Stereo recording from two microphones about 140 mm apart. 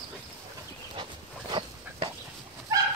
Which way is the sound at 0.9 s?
35° right (ahead or behind).